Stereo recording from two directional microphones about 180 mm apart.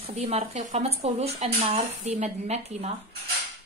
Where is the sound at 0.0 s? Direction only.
35° right (ahead or behind).